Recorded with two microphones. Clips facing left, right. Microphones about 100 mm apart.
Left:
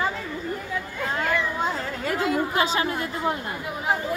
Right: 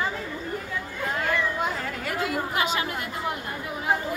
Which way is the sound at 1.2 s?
30° left (ahead or behind).